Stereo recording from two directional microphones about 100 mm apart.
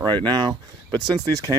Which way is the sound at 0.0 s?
45° right (ahead or behind).